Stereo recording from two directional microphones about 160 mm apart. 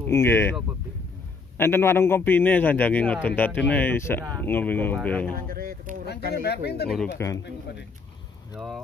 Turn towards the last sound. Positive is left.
turn(degrees=20)  # may be behind; listen again after turning